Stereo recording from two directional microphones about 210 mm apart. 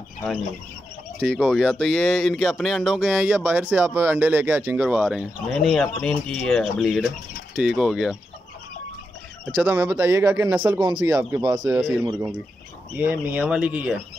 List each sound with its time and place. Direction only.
1.2 s speech: centre (ahead or behind)
9.5 s speech: 5° right (ahead or behind)